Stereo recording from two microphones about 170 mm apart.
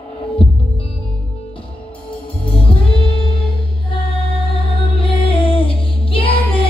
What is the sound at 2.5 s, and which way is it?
Music, 35° left (ahead or behind).